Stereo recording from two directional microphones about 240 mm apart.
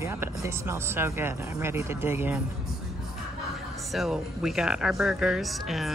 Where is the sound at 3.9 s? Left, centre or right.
Centre.